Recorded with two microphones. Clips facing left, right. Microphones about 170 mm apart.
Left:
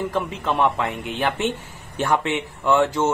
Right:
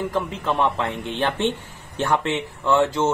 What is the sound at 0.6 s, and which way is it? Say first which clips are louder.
Speech: left 2 dB; 10° left (ahead or behind).